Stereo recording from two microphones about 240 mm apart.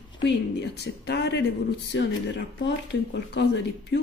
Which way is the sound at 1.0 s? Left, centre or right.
Left.